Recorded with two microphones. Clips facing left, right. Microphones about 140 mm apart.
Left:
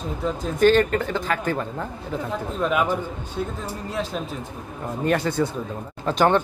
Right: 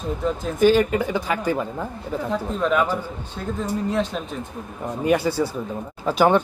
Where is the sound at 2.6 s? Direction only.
5° left (ahead or behind).